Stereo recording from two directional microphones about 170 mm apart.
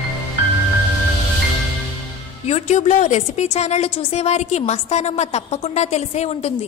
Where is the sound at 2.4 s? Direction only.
40° left (ahead or behind).